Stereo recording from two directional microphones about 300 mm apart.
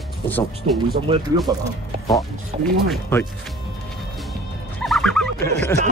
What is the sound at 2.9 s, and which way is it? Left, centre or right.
Speech, centre.